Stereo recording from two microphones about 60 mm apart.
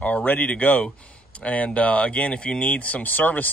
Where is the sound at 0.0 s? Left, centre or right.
Left.